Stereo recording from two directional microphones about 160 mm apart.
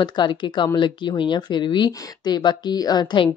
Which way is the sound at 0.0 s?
25° left (ahead or behind).